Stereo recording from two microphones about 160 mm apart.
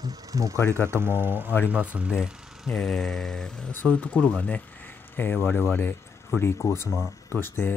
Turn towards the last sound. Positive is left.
turn(degrees=15)  # may be behind; listen again after turning